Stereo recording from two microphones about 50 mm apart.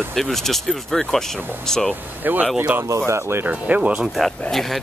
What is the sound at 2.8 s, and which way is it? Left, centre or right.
Speech, right.